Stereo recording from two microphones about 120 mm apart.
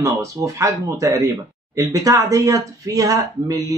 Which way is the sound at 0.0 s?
25° right (ahead or behind).